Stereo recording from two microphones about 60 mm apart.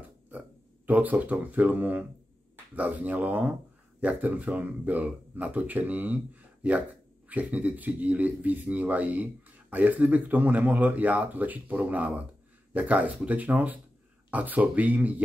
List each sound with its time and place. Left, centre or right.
0.8 s speech: right